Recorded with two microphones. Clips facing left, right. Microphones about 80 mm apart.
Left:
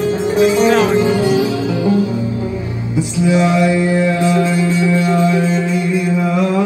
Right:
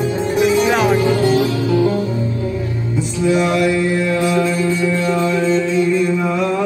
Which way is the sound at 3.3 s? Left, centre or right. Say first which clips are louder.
Left 1 dB; centre.